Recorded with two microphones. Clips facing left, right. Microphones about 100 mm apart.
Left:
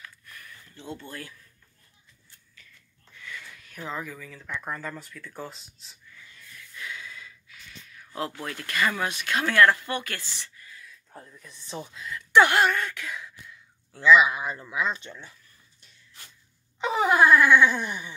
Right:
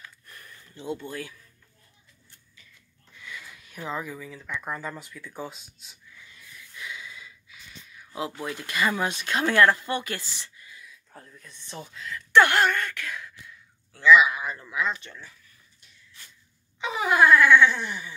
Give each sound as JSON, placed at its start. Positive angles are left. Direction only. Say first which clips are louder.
{"t": 0.0, "sound": "a sound", "louder": "left 1 dB", "side_deg": -30}
{"t": 0.7, "sound": "speech", "louder": "right 6 dB", "side_deg": -15}
{"t": 3.2, "sound": "a sound", "louder": "even", "side_deg": -15}
{"t": 4.6, "sound": "speech", "louder": "right 1 dB", "side_deg": -10}
{"t": 5.9, "sound": "snort", "louder": "even", "side_deg": -10}
{"t": 8.4, "sound": "speech", "louder": "right 1 dB", "side_deg": -15}
{"t": 11.1, "sound": "speech", "louder": "left 3 dB", "side_deg": 5}
{"t": 13.9, "sound": "speech", "louder": "right 1 dB", "side_deg": 25}
{"t": 16.8, "sound": "wail", "louder": "left 1 dB", "side_deg": 30}
{"t": 17.3, "sound": "a sound", "louder": "right 1 dB", "side_deg": 15}